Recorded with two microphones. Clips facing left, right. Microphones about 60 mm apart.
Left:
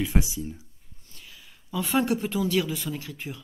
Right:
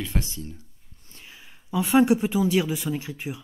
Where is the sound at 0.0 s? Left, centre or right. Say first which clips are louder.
Left 3 dB; centre.